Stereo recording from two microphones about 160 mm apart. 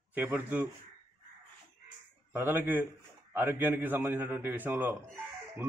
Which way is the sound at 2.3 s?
15° right (ahead or behind).